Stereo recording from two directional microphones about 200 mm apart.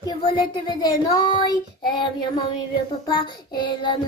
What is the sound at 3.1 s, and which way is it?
Speech, 25° left (ahead or behind).